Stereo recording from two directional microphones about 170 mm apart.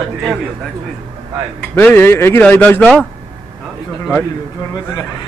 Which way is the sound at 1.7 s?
15° left (ahead or behind).